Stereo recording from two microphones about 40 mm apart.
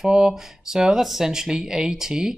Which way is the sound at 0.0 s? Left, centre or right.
Centre.